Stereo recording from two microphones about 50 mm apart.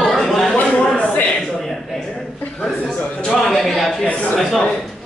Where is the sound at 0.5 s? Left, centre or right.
Left.